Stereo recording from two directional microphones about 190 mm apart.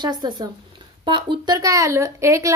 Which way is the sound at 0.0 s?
20° right (ahead or behind).